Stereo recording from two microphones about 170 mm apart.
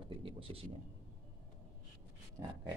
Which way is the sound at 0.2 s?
30° right (ahead or behind).